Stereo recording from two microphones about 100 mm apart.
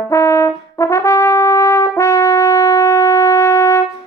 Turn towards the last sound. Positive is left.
turn(degrees=30)  # may be behind; listen again after turning